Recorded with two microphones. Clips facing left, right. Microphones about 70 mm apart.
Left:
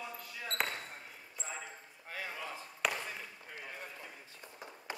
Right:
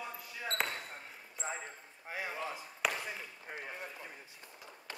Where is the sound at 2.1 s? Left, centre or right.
Centre.